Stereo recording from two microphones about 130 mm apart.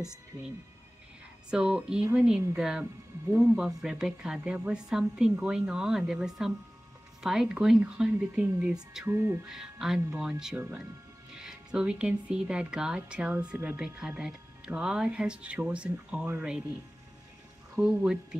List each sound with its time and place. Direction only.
1.5 s a woman's voice: 5° right (ahead or behind)
9.1 s speech: 20° right (ahead or behind)
9.5 s a woman's voice: 5° right (ahead or behind)
17.7 s a woman's voice: 5° right (ahead or behind)